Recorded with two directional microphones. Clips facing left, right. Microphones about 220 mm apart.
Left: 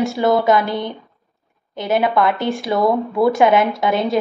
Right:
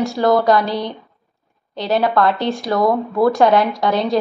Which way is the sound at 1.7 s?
20° left (ahead or behind).